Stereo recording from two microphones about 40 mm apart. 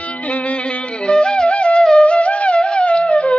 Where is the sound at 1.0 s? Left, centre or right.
Left.